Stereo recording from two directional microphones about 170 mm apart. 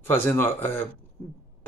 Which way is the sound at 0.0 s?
10° left (ahead or behind).